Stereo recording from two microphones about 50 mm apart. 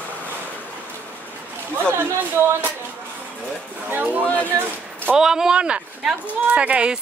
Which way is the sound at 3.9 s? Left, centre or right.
Right.